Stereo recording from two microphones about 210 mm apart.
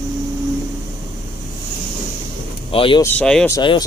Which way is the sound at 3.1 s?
5° left (ahead or behind).